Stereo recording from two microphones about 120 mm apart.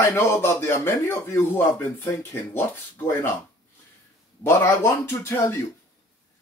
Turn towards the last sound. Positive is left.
turn(degrees=20)  # may be behind; listen again after turning